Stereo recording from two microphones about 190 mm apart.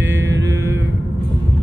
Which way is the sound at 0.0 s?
15° right (ahead or behind).